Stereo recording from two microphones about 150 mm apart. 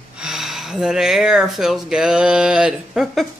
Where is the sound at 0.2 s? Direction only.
5° right (ahead or behind).